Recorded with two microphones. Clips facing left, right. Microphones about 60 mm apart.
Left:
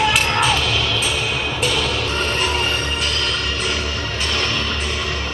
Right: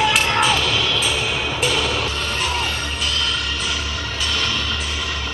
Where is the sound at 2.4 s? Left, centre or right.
Left.